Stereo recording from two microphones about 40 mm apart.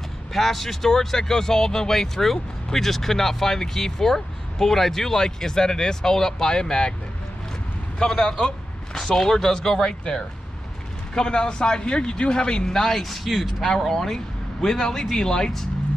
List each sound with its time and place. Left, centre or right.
0.3 s speech: centre
8.0 s speech: centre
13.7 s a man's voice: centre